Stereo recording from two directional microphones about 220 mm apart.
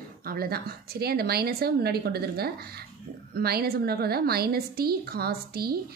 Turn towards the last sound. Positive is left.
turn(degrees=-45)  # may be behind; listen again after turning